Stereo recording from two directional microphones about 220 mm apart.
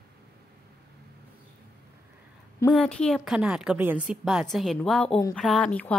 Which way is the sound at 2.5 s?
5° left (ahead or behind).